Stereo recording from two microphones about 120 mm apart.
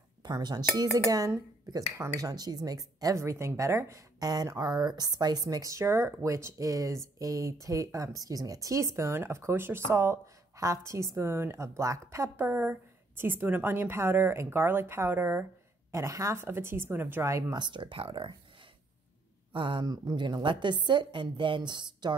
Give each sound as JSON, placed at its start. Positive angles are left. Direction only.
{"t": 0.2, "sound": "speech", "side_deg": -35}
{"t": 1.7, "sound": "speech", "side_deg": -30}
{"t": 17.6, "sound": "speech", "side_deg": -40}
{"t": 19.5, "sound": "a woman's voice", "side_deg": -45}